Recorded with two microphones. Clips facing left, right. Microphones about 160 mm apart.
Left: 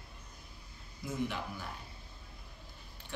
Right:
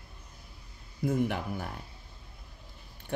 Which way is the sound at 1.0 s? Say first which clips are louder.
Right 8 dB; 55° right (ahead or behind).